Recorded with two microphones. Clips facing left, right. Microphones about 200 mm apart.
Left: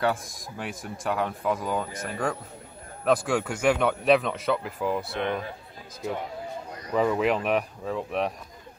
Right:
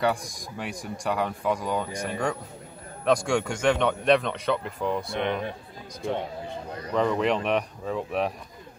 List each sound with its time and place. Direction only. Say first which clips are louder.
0.0 s a man's voice: right 1 dB; centre (ahead or behind)
5.2 s speech: right 2 dB; 20° right (ahead or behind)
6.9 s a man's voice: even; 5° left (ahead or behind)